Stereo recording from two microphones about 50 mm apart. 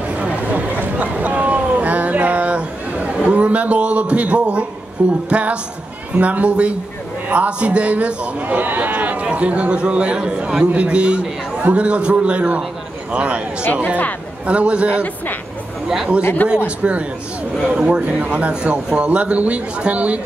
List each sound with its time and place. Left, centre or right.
0.2 s a sound: right
5.0 s a man's voice: right
14.4 s a man's voice: right
16.4 s a man's voice: centre